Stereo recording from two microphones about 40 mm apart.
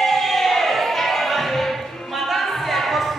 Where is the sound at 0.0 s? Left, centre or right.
Centre.